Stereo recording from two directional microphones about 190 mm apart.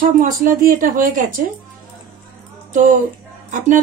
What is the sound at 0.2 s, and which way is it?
Speech, 45° right (ahead or behind).